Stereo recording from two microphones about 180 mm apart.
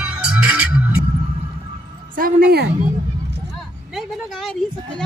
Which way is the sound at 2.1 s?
55° right (ahead or behind).